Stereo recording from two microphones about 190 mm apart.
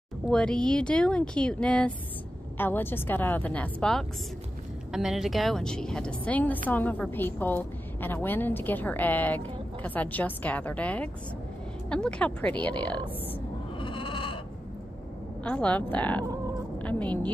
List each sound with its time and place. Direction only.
0.3 s a woman's voice: 5° left (ahead or behind)
13.7 s sheep: 25° left (ahead or behind)
15.4 s a woman's voice: 5° left (ahead or behind)